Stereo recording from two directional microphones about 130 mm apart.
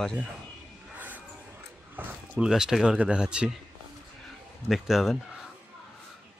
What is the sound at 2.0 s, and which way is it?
Speech, 10° right (ahead or behind).